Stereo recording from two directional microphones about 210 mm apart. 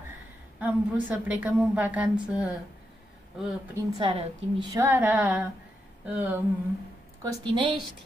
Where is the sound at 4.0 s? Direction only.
25° right (ahead or behind).